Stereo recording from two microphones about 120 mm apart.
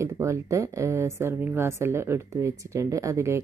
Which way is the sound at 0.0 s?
25° right (ahead or behind).